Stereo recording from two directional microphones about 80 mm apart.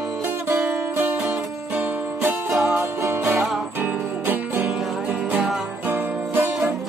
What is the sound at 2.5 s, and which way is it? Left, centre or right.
Music, centre.